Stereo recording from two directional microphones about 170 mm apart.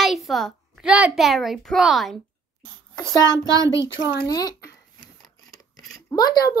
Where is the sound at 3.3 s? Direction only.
20° right (ahead or behind).